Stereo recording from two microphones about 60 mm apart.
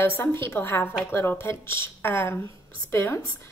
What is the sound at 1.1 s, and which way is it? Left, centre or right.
Speech, left.